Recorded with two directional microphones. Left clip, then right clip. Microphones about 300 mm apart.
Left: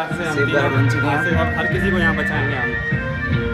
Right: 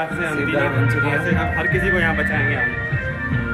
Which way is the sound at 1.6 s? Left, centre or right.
Centre.